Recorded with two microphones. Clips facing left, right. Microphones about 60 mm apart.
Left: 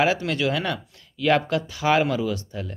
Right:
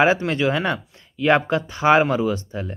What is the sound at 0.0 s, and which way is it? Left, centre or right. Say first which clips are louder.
Speech: right 4 dB; right.